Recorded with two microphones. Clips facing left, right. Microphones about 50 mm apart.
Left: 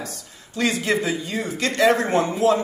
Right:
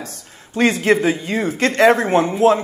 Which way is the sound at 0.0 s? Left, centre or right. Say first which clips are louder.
Right 1 dB; right.